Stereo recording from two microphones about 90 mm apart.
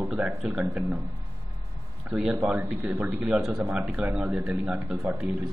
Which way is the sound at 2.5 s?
10° right (ahead or behind).